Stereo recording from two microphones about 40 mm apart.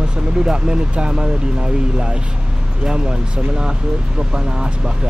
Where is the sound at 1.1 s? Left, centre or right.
Centre.